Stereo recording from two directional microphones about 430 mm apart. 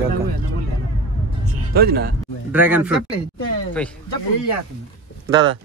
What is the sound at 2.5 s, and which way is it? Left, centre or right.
Speech, centre.